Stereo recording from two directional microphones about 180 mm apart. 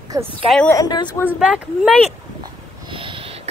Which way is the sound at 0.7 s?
20° left (ahead or behind).